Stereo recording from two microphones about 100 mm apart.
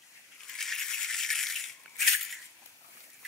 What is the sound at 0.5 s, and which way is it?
Rattle, 5° left (ahead or behind).